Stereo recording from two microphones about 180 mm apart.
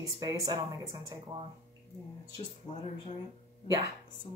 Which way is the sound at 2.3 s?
30° left (ahead or behind).